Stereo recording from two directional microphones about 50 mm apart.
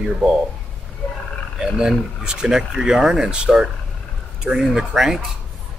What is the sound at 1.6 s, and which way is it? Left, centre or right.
Speech, centre.